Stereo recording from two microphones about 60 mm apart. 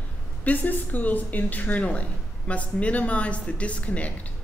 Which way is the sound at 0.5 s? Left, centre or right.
Left.